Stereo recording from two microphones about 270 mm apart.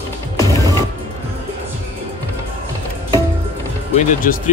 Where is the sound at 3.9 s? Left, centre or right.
Left.